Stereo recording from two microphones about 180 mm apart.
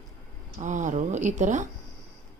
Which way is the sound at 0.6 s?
45° right (ahead or behind).